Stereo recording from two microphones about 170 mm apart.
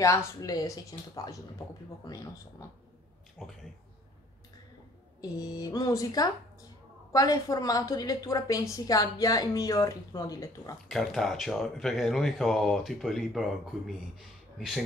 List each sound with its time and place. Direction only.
0.4 s a woman's voice: 20° left (ahead or behind)
3.4 s speech: 5° right (ahead or behind)
5.2 s a woman's voice: 20° left (ahead or behind)
10.9 s speech: centre (ahead or behind)